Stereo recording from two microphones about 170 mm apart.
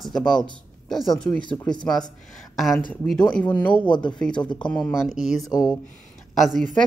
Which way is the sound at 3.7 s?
30° left (ahead or behind).